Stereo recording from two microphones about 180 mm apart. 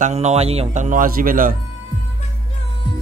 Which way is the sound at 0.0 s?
40° right (ahead or behind).